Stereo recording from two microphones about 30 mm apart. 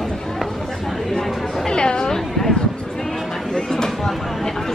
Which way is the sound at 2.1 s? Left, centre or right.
Centre.